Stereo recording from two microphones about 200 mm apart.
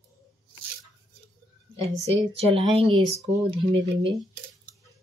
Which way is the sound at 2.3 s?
30° right (ahead or behind).